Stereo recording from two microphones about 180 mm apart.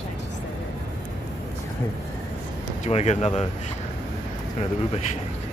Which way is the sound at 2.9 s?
35° left (ahead or behind).